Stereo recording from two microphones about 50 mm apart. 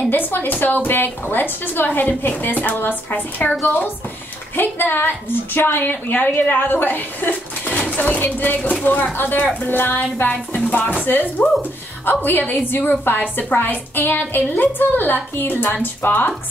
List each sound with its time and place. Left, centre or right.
0.1 s a woman's voice: left